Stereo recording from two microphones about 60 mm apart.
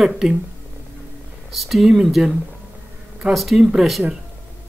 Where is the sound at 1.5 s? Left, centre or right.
Centre.